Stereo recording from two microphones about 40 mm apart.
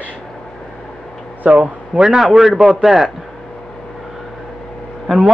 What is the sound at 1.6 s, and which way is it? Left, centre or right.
A man's voice, centre.